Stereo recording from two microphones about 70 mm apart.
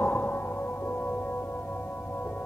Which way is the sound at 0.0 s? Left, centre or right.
Left.